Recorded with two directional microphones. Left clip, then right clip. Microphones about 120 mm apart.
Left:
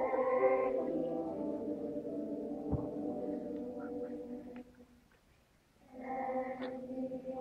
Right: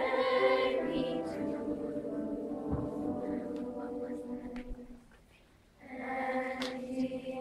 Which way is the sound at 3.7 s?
40° right (ahead or behind).